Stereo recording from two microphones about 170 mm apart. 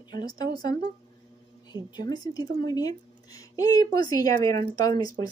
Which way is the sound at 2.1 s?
20° left (ahead or behind).